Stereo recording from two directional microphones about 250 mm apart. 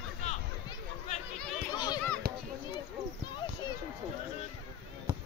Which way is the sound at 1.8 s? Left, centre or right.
Centre.